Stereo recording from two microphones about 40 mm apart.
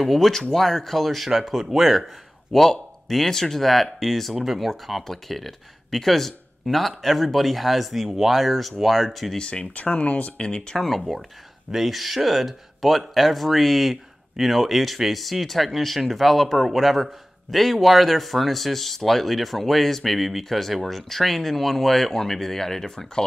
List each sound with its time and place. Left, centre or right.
0.0 s speech: centre
9.4 s speech: left
10.8 s speech: centre